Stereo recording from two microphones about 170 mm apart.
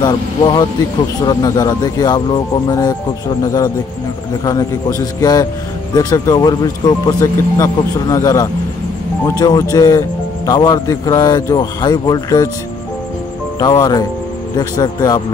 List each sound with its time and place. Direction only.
0.0 s a man's voice: 25° left (ahead or behind)
4.5 s a man's voice: 20° left (ahead or behind)
13.6 s a man's voice: 25° left (ahead or behind)